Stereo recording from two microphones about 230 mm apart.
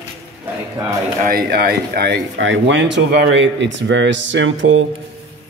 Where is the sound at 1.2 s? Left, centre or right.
Right.